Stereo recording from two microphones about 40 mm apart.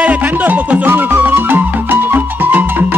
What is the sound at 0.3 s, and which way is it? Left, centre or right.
Music, right.